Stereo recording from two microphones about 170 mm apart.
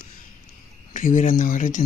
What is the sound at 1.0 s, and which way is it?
Speech, 50° left (ahead or behind).